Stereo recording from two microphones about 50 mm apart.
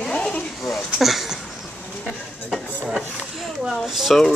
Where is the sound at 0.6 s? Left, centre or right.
Centre.